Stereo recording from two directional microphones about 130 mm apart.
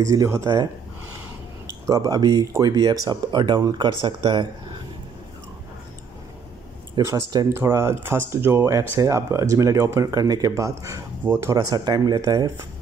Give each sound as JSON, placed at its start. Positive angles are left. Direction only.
{"t": 0.0, "sound": "speech", "side_deg": -25}
{"t": 1.9, "sound": "speech", "side_deg": -25}
{"t": 7.1, "sound": "speech", "side_deg": -25}